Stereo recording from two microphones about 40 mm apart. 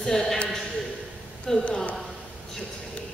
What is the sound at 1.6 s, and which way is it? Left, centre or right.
Speech, left.